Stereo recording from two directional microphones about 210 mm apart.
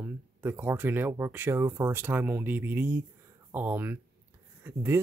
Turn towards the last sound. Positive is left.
turn(degrees=-10)  # may be behind; listen again after turning